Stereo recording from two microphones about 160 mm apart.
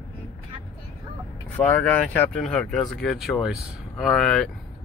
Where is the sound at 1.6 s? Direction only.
10° left (ahead or behind).